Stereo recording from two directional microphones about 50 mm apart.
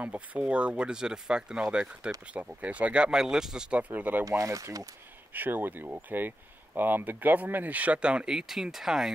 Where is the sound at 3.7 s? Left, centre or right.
Right.